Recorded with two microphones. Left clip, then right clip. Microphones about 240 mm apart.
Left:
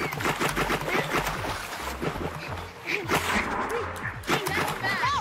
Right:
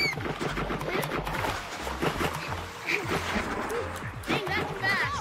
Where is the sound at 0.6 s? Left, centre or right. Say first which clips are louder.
Left 4 dB; centre.